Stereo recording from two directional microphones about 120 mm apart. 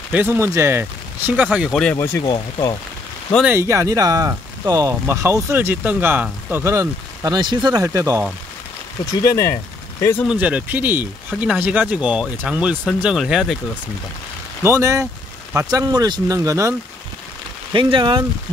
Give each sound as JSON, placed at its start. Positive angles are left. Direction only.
{"t": 0.1, "sound": "speech", "side_deg": -15}
{"t": 1.7, "sound": "speech", "side_deg": 5}
{"t": 2.2, "sound": "speech", "side_deg": 40}
{"t": 3.4, "sound": "speech", "side_deg": -20}
{"t": 7.3, "sound": "speech", "side_deg": -35}
{"t": 9.2, "sound": "speech", "side_deg": 25}
{"t": 10.2, "sound": "speech", "side_deg": -10}
{"t": 14.6, "sound": "speech", "side_deg": -25}
{"t": 17.7, "sound": "speech", "side_deg": -45}